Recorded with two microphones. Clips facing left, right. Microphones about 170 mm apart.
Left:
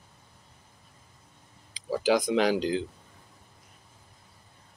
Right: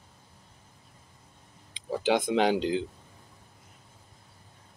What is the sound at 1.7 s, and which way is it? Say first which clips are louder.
Speech: left 2 dB; 25° right (ahead or behind).